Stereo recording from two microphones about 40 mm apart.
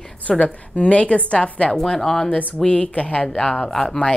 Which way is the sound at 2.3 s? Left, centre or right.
Left.